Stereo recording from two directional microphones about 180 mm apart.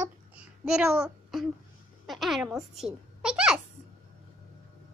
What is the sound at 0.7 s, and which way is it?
A child's voice, 5° right (ahead or behind).